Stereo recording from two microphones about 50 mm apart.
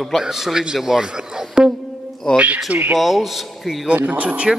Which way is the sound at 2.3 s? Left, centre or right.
Right.